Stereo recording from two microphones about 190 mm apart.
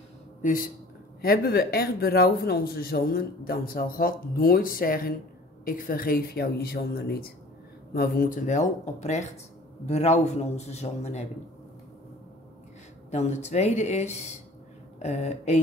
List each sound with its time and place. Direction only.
0.4 s a man's voice: 45° left (ahead or behind)
1.2 s speech: 55° left (ahead or behind); by 11.2 s 35° left (ahead or behind)
13.1 s speech: 35° left (ahead or behind)